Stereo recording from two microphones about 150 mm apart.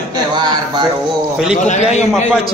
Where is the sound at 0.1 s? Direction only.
30° right (ahead or behind).